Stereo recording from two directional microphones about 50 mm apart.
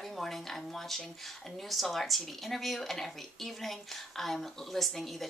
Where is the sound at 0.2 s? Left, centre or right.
Centre.